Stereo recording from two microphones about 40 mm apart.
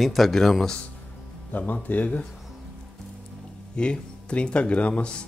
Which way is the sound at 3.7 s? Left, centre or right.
Left.